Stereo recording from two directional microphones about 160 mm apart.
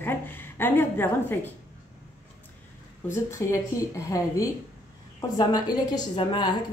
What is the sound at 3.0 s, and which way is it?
A woman's voice, 15° left (ahead or behind).